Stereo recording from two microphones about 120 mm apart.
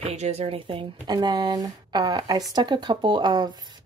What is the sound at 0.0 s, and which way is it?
Speech, 65° right (ahead or behind).